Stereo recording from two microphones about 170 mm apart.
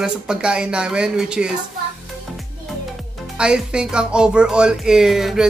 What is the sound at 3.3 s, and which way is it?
Music, 5° right (ahead or behind).